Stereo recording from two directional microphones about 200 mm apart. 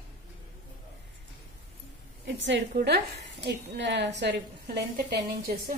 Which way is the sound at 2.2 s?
60° right (ahead or behind).